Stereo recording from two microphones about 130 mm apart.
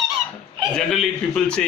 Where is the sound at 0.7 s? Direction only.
5° left (ahead or behind).